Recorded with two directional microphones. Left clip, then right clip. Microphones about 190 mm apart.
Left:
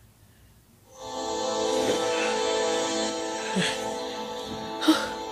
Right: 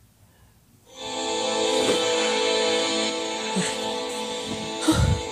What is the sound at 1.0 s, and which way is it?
Music, 35° right (ahead or behind).